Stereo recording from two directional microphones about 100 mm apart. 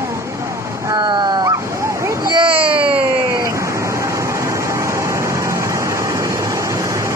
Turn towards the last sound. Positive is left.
turn(degrees=-30)  # may be behind; listen again after turning